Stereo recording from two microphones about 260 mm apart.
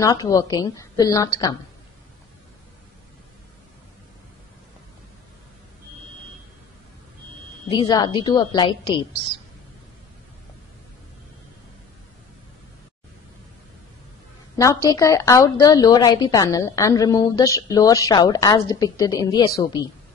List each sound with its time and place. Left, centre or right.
0.0 s a woman's voice: centre
7.7 s a woman's voice: centre
14.6 s a woman's voice: centre